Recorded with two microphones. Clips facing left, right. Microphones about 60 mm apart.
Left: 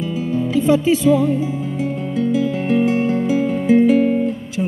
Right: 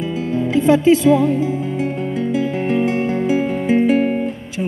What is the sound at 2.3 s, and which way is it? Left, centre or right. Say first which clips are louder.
Music: left 1 dB; right.